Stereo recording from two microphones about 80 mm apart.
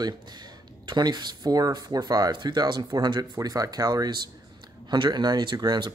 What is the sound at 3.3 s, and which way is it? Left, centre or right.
Speech, right.